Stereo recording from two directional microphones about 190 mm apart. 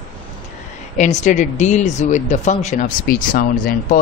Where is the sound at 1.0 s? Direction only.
40° left (ahead or behind).